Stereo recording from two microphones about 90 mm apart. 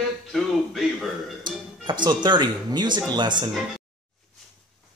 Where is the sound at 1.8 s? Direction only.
55° right (ahead or behind).